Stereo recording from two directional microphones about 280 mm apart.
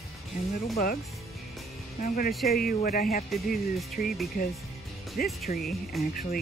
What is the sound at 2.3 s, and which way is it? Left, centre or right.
Speech, centre.